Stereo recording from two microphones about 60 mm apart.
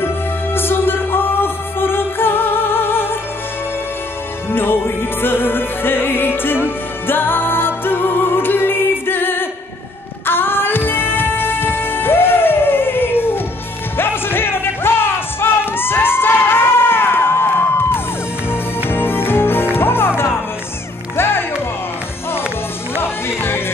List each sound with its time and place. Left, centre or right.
0.6 s music: left
4.5 s music: left
23.0 s music: left